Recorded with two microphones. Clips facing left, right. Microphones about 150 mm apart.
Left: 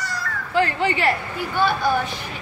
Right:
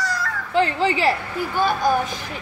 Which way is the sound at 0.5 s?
25° right (ahead or behind).